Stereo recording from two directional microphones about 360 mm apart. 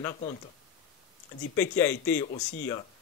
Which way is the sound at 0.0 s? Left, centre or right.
Centre.